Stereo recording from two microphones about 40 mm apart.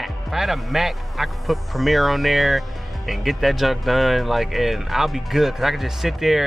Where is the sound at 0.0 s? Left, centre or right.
Centre.